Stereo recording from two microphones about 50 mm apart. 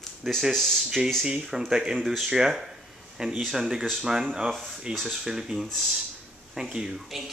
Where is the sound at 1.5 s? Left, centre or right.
Centre.